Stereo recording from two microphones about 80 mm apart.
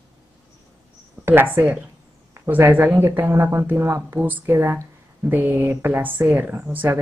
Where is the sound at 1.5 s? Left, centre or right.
Right.